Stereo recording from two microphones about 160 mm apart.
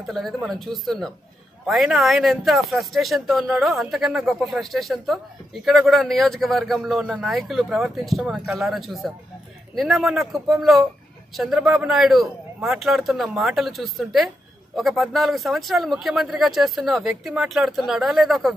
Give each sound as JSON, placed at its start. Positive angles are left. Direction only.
{"t": 0.0, "sound": "speech", "side_deg": 0}